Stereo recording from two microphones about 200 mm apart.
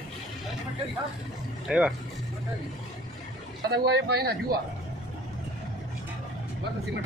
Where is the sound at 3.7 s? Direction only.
55° right (ahead or behind).